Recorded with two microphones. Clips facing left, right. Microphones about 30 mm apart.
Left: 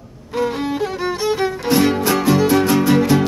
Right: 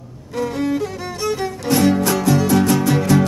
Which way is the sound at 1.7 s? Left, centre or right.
Centre.